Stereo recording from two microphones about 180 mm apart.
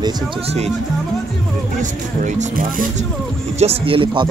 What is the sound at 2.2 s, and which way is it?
Speech, 45° right (ahead or behind).